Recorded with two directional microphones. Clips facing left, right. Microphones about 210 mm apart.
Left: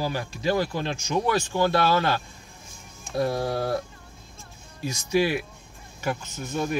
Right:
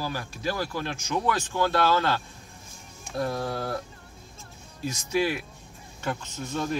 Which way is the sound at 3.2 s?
15° left (ahead or behind).